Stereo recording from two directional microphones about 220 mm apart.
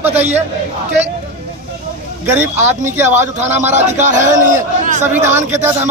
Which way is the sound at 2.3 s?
10° right (ahead or behind).